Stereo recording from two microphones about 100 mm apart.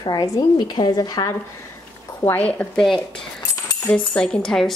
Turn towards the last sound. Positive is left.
turn(degrees=5)  # may be behind; listen again after turning